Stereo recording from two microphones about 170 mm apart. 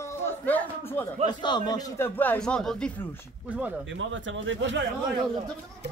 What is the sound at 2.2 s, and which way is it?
Speech, 10° left (ahead or behind).